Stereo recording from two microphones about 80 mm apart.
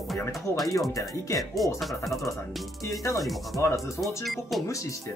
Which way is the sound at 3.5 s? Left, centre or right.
Left.